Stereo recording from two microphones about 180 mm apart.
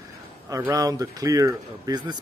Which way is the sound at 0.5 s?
15° right (ahead or behind).